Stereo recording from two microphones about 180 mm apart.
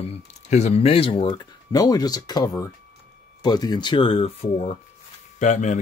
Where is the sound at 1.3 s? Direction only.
20° left (ahead or behind).